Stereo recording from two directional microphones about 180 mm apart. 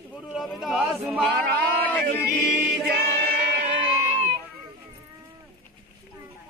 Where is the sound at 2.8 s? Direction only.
55° right (ahead or behind).